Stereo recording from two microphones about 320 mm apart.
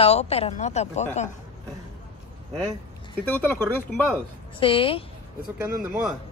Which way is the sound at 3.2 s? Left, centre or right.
Centre.